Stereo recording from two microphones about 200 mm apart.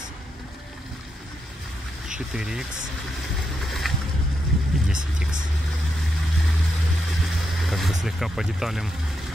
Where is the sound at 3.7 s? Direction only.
Centre (ahead or behind).